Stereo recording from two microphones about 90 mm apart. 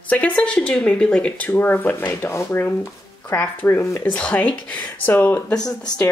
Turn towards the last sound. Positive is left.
turn(degrees=50)  # may be behind; listen again after turning